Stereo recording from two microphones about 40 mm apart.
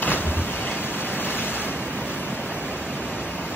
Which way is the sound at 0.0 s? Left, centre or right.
Left.